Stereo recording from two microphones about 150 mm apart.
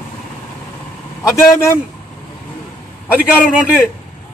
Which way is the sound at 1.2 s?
20° left (ahead or behind).